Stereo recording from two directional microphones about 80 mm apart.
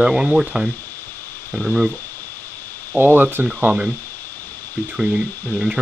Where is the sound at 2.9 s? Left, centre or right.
Right.